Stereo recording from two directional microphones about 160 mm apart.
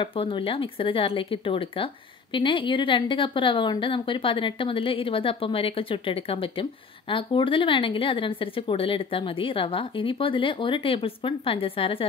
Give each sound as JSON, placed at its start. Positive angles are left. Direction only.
{"t": 0.0, "sound": "a woman's voice", "side_deg": 35}